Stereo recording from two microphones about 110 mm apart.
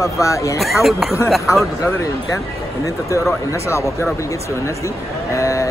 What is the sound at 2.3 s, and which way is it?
Speech, 30° left (ahead or behind).